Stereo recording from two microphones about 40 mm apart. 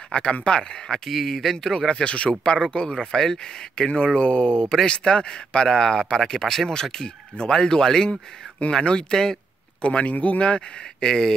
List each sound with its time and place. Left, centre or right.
0.1 s speech: left
1.1 s speech: centre
1.9 s speech: left
2.6 s speech: centre
8.1 s speech: left
8.7 s speech: centre
9.8 s speech: left
11.1 s speech: centre